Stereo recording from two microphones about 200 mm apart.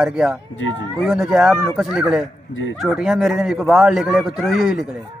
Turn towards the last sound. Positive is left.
turn(degrees=0)  # may be behind; listen again after turning